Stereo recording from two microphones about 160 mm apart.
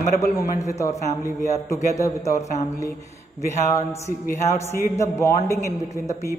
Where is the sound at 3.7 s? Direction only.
15° left (ahead or behind).